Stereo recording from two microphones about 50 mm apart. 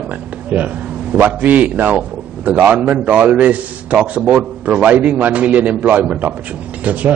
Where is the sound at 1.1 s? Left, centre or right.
Right.